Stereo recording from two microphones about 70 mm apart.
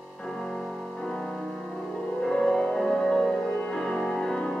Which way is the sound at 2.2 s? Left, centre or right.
Centre.